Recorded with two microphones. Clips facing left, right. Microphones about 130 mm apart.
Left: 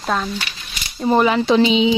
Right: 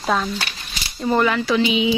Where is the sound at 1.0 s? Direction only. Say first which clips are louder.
Left 3 dB; 20° left (ahead or behind).